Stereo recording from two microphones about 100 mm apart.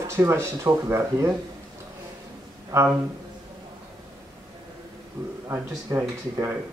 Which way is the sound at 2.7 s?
30° right (ahead or behind).